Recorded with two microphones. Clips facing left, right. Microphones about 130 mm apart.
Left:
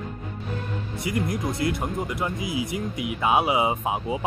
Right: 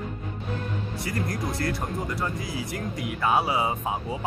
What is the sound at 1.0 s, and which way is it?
Speech, 20° left (ahead or behind).